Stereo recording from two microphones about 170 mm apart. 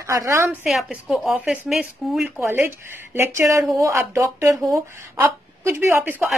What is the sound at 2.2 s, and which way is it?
Speech, 10° right (ahead or behind).